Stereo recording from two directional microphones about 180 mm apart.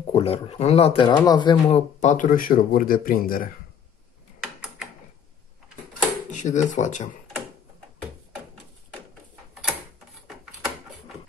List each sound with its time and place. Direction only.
0.1 s speech: 35° left (ahead or behind)
2.0 s speech: 45° left (ahead or behind)
6.3 s speech: 40° left (ahead or behind)
10.2 s a sound: 5° right (ahead or behind)